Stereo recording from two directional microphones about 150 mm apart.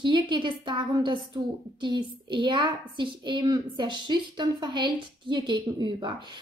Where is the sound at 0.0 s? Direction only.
30° right (ahead or behind).